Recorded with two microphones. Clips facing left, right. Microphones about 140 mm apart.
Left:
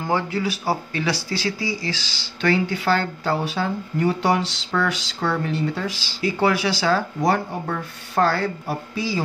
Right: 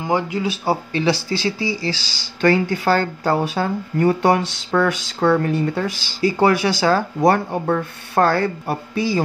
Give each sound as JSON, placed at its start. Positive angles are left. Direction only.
{"t": 0.0, "sound": "speech", "side_deg": -15}